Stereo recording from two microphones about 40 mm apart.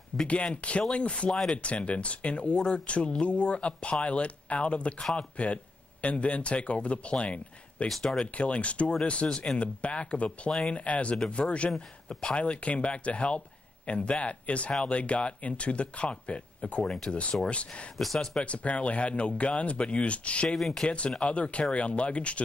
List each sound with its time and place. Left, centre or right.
0.1 s speech: centre
0.6 s speech: left
1.3 s speech: centre
1.6 s speech: left
8.0 s speech: centre
8.4 s speech: left
12.1 s speech: centre
12.4 s a man's voice: left
17.9 s speech: centre
18.4 s speech: left
20.4 s speech: centre
20.8 s speech: left